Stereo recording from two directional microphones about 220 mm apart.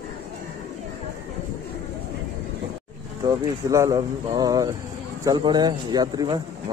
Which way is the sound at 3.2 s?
15° right (ahead or behind).